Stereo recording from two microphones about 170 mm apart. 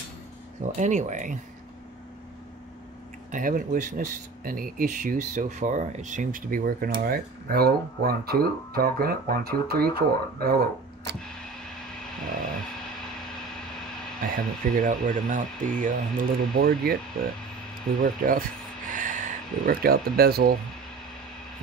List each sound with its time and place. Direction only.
0.7 s speech: 45° right (ahead or behind)
3.3 s speech: 50° right (ahead or behind)
14.2 s speech: 55° right (ahead or behind)
18.0 s speech: 55° right (ahead or behind)